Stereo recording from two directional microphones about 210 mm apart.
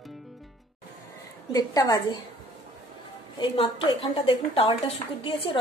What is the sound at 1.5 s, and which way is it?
Speech, 15° left (ahead or behind).